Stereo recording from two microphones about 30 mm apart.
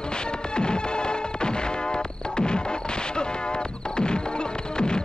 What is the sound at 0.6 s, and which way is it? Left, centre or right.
Music, left.